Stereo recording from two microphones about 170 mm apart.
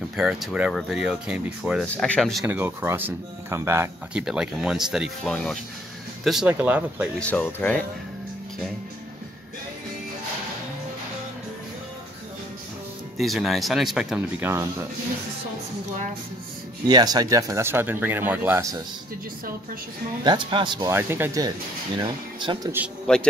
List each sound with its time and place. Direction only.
0.1 s speech: 5° right (ahead or behind)
2.4 s speech: 10° right (ahead or behind)
4.1 s speech: 5° right (ahead or behind)
7.2 s speech: 10° left (ahead or behind)
13.2 s speech: centre (ahead or behind)
16.8 s speech: 25° right (ahead or behind)
20.2 s speech: 30° right (ahead or behind)
20.9 s speech: 15° right (ahead or behind)
23.1 s speech: 5° left (ahead or behind)